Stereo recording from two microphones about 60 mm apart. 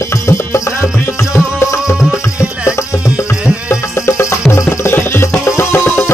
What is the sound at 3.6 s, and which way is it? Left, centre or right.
Music, left.